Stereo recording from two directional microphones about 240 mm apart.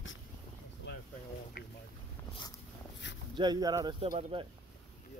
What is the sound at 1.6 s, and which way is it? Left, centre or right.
Boat, left.